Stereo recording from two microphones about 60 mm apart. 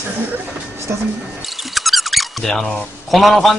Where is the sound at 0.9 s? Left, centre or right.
Right.